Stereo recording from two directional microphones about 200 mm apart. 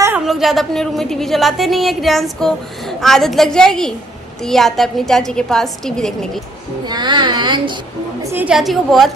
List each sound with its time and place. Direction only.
0.2 s a woman's voice: centre (ahead or behind)
6.9 s speech: 20° right (ahead or behind)
8.2 s a woman's voice: 10° right (ahead or behind)